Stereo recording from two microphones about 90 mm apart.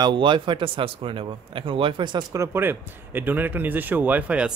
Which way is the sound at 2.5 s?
25° right (ahead or behind).